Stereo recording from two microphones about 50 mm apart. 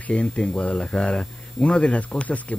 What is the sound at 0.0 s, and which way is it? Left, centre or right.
Speech, left.